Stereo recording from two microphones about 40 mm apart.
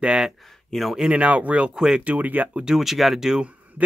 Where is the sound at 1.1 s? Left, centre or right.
Right.